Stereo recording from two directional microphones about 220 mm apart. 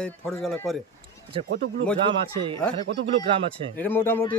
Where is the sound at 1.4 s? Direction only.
50° right (ahead or behind).